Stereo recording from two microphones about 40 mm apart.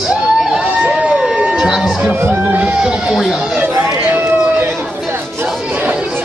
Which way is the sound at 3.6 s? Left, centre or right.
Right.